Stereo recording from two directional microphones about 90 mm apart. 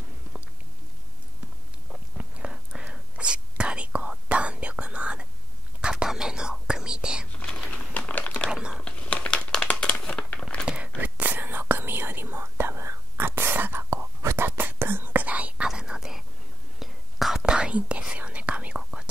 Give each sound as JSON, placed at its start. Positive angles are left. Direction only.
{"t": 1.9, "sound": "whispering", "side_deg": -15}
{"t": 7.3, "sound": "crumpling", "side_deg": 10}
{"t": 8.5, "sound": "whispering", "side_deg": -10}
{"t": 8.8, "sound": "crumpling", "side_deg": 15}
{"t": 10.6, "sound": "a sound", "side_deg": -10}
{"t": 11.0, "sound": "whispering", "side_deg": -20}